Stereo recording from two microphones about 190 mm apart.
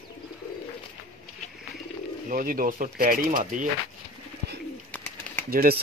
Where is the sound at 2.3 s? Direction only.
45° right (ahead or behind).